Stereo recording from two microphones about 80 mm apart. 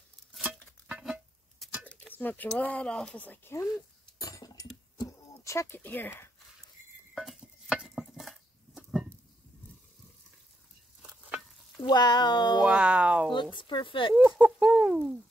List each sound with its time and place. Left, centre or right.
1.0 s music: centre
1.9 s cutlery: left
2.4 s speech: centre
3.3 s speech: left
4.2 s a sound: left
5.9 s speech: left
7.3 s a sound: centre
11.0 s stir: centre
11.8 s speech: left
12.6 s speech: centre
13.6 s speech: left
14.1 s speech: centre